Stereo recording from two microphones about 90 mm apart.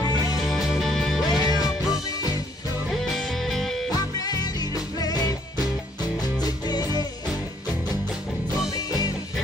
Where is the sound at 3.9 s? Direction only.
45° left (ahead or behind).